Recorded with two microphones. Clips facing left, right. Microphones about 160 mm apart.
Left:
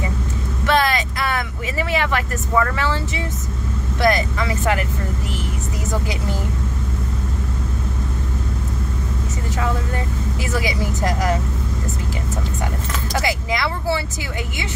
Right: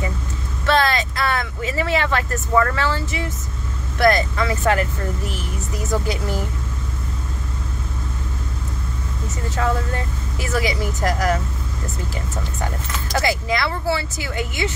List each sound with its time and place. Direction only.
0.7 s vehicle: 15° left (ahead or behind)
1.8 s speech: 15° left (ahead or behind)
4.0 s speech: 20° left (ahead or behind)
9.6 s speech: 20° left (ahead or behind)
13.2 s speech: 15° left (ahead or behind)